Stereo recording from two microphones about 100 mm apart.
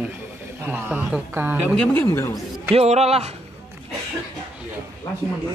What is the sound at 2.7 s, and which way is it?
Speech, 90° right.